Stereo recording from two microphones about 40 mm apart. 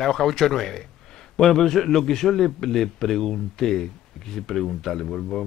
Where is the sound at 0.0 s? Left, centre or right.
Centre.